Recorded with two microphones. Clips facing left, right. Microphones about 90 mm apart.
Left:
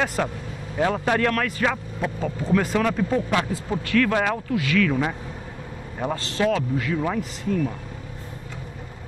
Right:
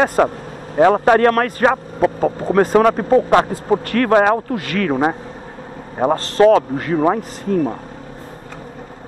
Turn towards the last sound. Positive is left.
turn(degrees=-45)  # may be behind; listen again after turning